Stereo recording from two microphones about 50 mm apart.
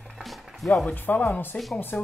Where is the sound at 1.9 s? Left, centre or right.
Left.